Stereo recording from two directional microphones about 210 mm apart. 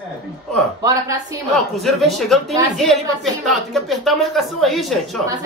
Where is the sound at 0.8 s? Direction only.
15° right (ahead or behind).